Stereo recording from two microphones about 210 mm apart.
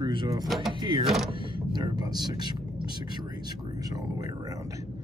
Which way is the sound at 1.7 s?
20° right (ahead or behind).